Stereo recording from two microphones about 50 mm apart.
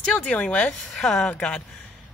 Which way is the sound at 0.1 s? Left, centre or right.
Left.